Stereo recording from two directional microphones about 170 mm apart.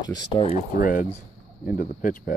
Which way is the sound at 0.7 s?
55° left (ahead or behind).